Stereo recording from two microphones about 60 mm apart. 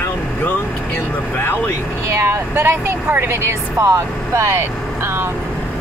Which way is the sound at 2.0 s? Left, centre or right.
Right.